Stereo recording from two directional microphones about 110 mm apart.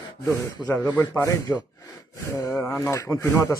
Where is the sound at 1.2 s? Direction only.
30° left (ahead or behind).